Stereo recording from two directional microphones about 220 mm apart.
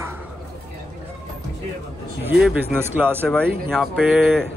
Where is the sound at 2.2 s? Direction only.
5° right (ahead or behind).